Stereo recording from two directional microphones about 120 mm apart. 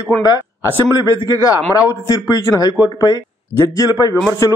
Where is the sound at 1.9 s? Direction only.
30° left (ahead or behind).